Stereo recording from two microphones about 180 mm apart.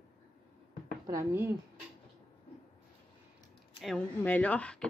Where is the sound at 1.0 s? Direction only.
15° right (ahead or behind).